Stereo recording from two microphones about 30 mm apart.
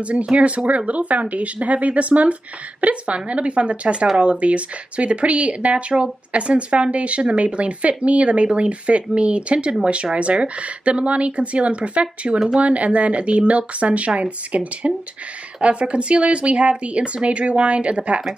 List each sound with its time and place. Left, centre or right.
0.0 s speech: right